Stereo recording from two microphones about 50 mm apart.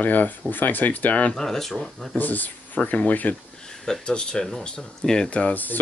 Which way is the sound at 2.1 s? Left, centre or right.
Left.